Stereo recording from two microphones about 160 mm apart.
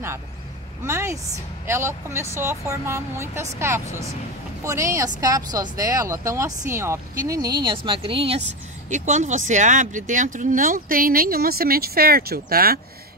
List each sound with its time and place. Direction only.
0.8 s a woman's voice: 15° right (ahead or behind); by 8.4 s 35° right (ahead or behind)
8.9 s speech: 50° right (ahead or behind); by 12.8 s 70° right (ahead or behind)